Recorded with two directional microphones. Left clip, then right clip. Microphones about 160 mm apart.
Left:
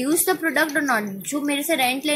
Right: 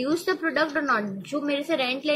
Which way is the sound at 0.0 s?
50° left (ahead or behind).